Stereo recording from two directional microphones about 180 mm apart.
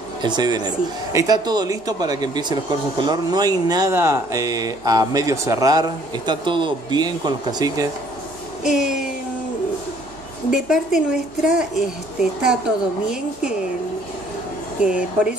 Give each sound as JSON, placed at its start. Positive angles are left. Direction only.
{"t": 0.2, "sound": "speech", "side_deg": -25}
{"t": 8.6, "sound": "a woman's voice", "side_deg": -5}
{"t": 10.5, "sound": "a woman's voice", "side_deg": -5}
{"t": 14.8, "sound": "a woman's voice", "side_deg": -5}